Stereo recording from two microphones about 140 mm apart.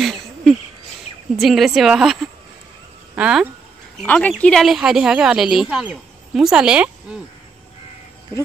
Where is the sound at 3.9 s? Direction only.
10° left (ahead or behind); by 6.9 s 5° right (ahead or behind).